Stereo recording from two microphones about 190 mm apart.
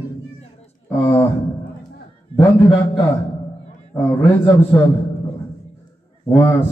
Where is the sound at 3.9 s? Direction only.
10° left (ahead or behind).